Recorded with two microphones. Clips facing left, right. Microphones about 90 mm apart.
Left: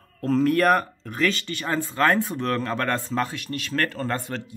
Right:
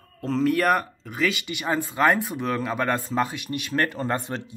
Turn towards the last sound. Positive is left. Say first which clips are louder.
# right 1 dB
turn(degrees=-15)  # may be behind; listen again after turning